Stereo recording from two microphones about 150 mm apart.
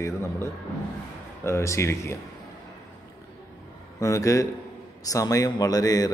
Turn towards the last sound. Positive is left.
turn(degrees=25)  # may be behind; listen again after turning